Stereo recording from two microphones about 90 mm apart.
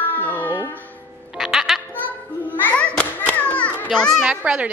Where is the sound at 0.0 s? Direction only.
20° left (ahead or behind).